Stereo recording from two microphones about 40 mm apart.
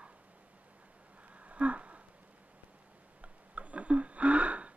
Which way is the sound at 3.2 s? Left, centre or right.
Right.